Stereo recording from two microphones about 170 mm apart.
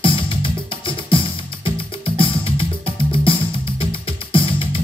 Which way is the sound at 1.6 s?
30° left (ahead or behind).